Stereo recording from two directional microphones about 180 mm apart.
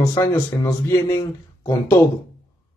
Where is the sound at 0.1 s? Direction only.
15° left (ahead or behind).